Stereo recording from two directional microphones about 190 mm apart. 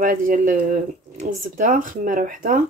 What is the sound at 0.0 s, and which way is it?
Speech, 45° right (ahead or behind).